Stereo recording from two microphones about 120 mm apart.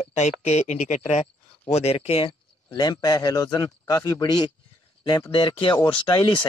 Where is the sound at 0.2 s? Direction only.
70° left (ahead or behind).